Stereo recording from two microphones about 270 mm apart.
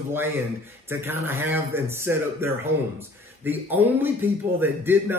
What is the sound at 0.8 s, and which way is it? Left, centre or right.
A man's voice, centre.